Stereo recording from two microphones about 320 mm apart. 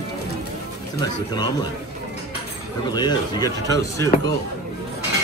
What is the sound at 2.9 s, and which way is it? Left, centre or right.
Speech, centre.